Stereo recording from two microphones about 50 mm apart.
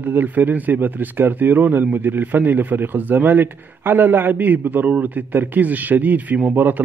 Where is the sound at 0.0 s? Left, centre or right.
Right.